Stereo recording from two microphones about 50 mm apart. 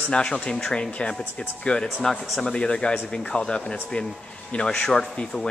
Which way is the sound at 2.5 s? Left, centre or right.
Centre.